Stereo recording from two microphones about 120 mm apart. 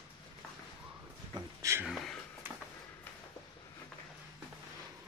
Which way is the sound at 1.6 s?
25° right (ahead or behind).